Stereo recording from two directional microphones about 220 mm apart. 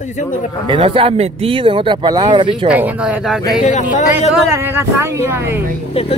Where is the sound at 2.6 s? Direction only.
5° right (ahead or behind).